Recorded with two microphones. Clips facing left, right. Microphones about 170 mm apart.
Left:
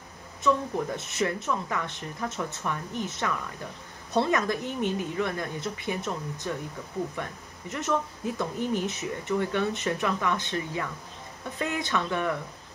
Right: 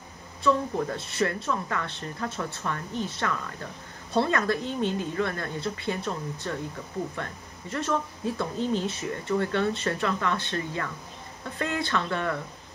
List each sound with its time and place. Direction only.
0.4 s speech: 20° left (ahead or behind)